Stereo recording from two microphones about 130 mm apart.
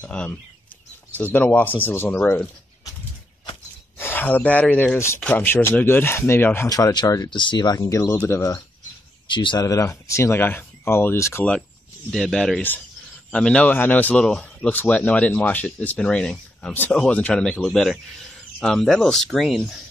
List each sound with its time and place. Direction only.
0.0 s speech: 10° left (ahead or behind)
4.0 s speech: 15° left (ahead or behind)
6.7 s speech: 30° left (ahead or behind)
9.3 s speech: 35° left (ahead or behind); by 11.4 s 20° left (ahead or behind)
12.1 s speech: 5° left (ahead or behind)